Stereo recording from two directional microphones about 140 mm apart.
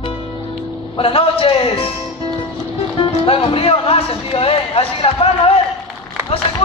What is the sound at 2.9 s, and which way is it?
Music, 40° left (ahead or behind).